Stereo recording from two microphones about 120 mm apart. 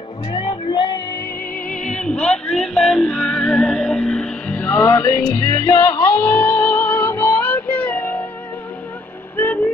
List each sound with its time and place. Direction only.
0.3 s music: 45° left (ahead or behind)
1.7 s music: 10° left (ahead or behind)
9.4 s a sound: 15° left (ahead or behind)